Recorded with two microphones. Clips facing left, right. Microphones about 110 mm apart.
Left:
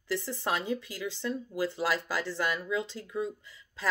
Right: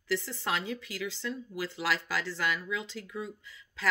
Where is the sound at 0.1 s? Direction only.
15° left (ahead or behind).